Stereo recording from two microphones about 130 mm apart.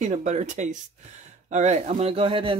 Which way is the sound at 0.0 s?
65° right (ahead or behind).